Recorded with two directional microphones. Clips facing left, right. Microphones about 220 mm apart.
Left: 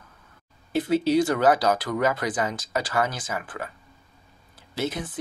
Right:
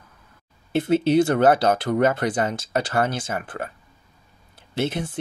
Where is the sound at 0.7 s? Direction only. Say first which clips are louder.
Right 3 dB; 25° right (ahead or behind).